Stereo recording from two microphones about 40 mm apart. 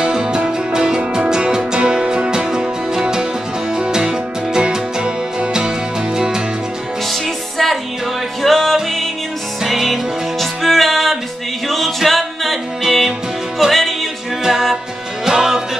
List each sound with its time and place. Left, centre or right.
0.0 s music: centre
7.1 s music: centre
11.7 s a capella: centre
12.8 s music: centre
13.7 s music: centre
15.2 s music: centre